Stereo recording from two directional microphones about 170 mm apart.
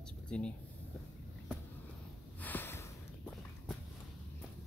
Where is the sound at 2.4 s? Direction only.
10° left (ahead or behind).